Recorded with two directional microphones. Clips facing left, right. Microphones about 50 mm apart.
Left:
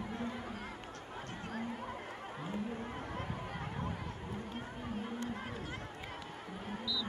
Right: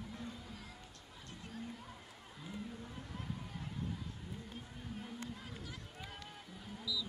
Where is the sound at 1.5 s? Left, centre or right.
Left.